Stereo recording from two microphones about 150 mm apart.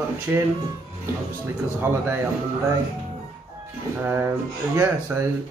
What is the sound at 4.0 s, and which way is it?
Speech, 15° right (ahead or behind).